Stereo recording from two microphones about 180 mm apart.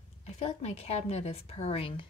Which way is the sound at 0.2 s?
35° left (ahead or behind).